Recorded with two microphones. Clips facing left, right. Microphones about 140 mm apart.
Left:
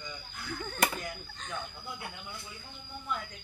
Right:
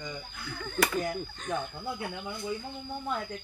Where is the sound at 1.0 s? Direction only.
50° right (ahead or behind).